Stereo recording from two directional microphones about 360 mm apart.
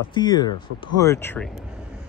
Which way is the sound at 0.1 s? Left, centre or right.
Centre.